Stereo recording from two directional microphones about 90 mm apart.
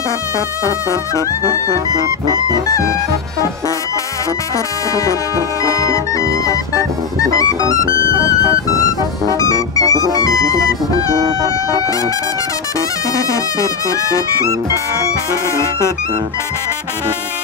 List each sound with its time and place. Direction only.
0.7 s music: 35° left (ahead or behind)
5.6 s music: 40° left (ahead or behind)
9.4 s music: 40° left (ahead or behind)
13.1 s music: 40° left (ahead or behind)